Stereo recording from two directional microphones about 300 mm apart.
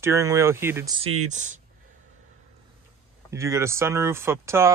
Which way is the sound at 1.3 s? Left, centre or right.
Right.